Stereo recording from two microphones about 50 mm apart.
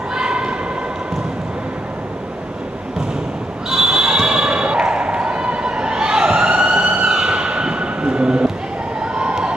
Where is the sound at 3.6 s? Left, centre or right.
Centre.